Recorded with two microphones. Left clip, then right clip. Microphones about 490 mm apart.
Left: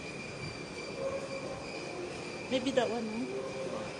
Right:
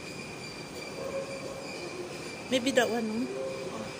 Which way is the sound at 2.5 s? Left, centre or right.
Left.